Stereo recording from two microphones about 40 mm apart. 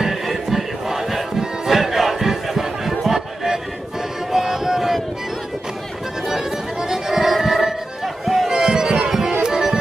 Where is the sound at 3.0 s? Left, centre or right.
Centre.